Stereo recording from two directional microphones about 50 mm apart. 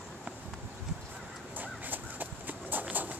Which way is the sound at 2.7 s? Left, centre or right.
Right.